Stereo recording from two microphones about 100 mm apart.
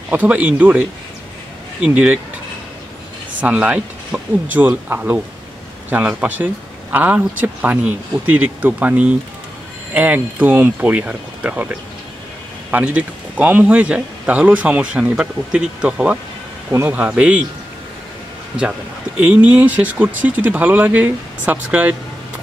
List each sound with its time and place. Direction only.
0.1 s speech: 15° right (ahead or behind)
3.3 s speech: 15° right (ahead or behind)
18.6 s speech: 10° right (ahead or behind)